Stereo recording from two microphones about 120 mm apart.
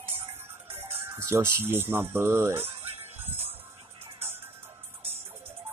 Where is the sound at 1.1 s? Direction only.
25° right (ahead or behind).